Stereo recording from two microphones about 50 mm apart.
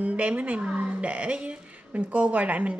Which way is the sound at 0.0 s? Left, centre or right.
Right.